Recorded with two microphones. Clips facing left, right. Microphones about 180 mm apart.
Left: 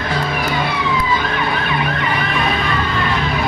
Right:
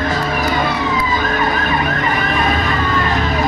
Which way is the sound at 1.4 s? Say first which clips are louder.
Right 2 dB; 45° right (ahead or behind).